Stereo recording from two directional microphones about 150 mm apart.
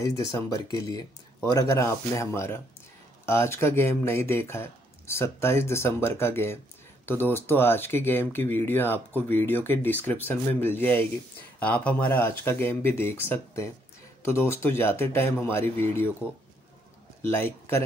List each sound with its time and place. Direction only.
0.0 s speech: 20° left (ahead or behind)
17.2 s a man's voice: 15° left (ahead or behind)